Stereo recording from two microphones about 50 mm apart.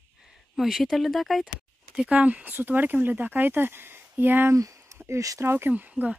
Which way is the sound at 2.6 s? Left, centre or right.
Right.